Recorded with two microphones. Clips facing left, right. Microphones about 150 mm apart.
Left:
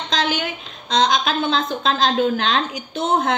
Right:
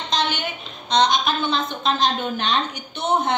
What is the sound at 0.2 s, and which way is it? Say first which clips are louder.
A woman's voice: left 2 dB; 90° left.